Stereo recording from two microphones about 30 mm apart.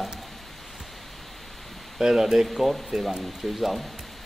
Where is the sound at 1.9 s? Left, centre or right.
Centre.